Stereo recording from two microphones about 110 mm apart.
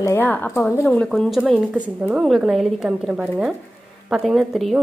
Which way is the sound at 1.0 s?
5° left (ahead or behind).